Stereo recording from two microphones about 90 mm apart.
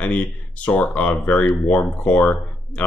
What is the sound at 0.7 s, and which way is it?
Speech, 15° left (ahead or behind).